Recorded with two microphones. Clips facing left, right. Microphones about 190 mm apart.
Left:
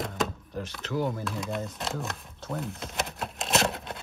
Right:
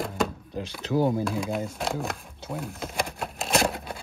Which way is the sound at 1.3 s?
Centre (ahead or behind).